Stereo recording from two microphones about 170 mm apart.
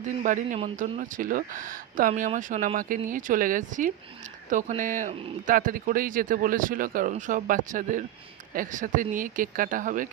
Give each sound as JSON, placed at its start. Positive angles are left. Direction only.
{"t": 0.0, "sound": "speech", "side_deg": -50}